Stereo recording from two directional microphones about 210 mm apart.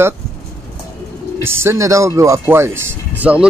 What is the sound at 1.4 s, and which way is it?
Speech, 10° right (ahead or behind).